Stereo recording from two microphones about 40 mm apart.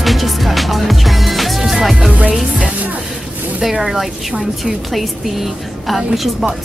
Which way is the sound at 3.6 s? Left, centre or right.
Centre.